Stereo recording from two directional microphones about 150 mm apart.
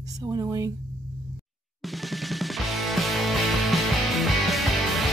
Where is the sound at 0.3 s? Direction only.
25° right (ahead or behind).